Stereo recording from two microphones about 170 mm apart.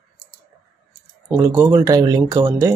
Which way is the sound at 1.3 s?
15° right (ahead or behind).